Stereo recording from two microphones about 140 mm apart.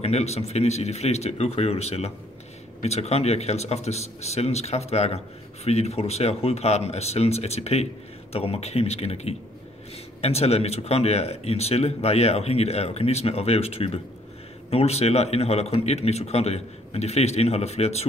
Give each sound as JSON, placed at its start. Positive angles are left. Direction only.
{"t": 0.0, "sound": "speech", "side_deg": 50}